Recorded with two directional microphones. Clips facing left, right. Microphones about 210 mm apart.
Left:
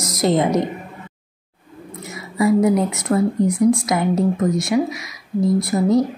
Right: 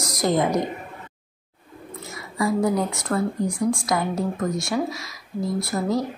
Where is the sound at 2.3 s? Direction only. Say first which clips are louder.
Left 6 dB; 20° left (ahead or behind).